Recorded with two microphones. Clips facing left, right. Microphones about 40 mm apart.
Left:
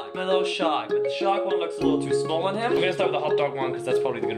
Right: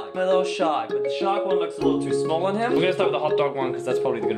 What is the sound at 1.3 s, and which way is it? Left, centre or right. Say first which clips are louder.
Speech: right 2 dB; centre.